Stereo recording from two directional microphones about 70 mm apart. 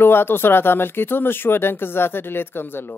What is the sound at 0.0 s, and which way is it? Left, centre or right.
A man's voice, left.